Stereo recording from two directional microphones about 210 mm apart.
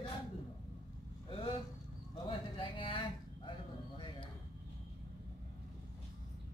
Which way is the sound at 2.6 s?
25° left (ahead or behind).